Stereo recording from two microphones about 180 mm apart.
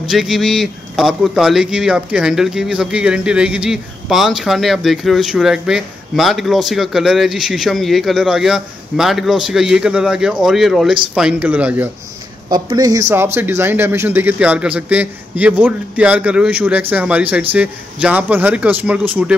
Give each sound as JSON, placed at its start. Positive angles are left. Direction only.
{"t": 0.1, "sound": "speech", "side_deg": 0}
{"t": 12.4, "sound": "a man's voice", "side_deg": -25}